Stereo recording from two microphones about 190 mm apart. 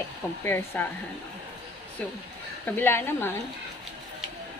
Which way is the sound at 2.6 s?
10° left (ahead or behind).